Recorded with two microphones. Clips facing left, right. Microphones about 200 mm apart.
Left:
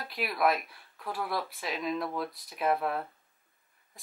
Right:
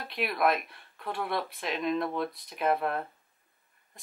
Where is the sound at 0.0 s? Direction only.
Centre (ahead or behind).